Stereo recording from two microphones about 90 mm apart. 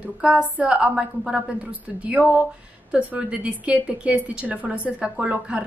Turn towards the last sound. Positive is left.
turn(degrees=-15)  # may be behind; listen again after turning